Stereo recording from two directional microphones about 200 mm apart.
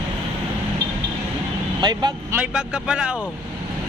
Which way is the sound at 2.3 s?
5° right (ahead or behind).